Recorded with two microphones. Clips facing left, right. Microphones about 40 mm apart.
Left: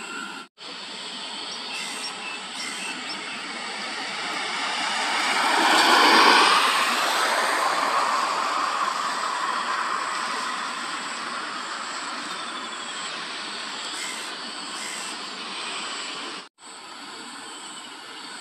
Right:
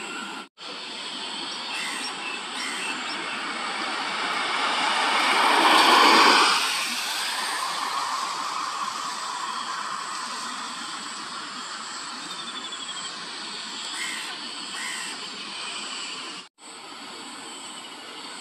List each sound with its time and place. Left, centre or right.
1.7 s train: centre
6.5 s a sound: left
9.3 s vehicle: left